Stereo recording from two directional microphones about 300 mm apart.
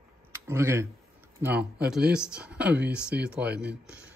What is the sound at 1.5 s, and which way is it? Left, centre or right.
Speech, right.